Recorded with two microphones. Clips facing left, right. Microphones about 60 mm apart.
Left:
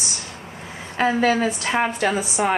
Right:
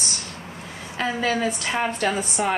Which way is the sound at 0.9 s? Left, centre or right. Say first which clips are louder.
Left 5 dB; left.